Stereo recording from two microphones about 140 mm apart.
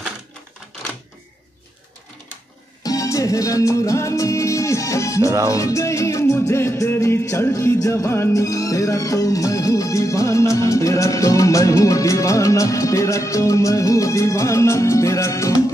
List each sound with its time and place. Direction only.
2.8 s music: 25° left (ahead or behind)